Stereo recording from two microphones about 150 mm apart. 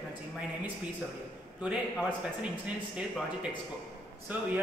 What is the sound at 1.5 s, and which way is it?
A man's voice, 5° right (ahead or behind).